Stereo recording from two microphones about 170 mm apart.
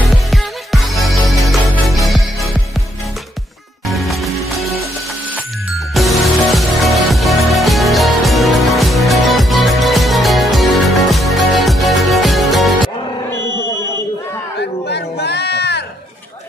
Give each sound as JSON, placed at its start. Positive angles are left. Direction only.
{"t": 0.1, "sound": "music", "side_deg": 0}
{"t": 3.8, "sound": "music", "side_deg": 0}
{"t": 5.9, "sound": "music", "side_deg": 0}
{"t": 14.6, "sound": "a sound", "side_deg": 75}